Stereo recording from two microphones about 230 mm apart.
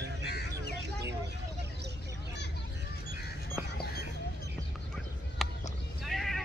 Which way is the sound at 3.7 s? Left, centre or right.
Left.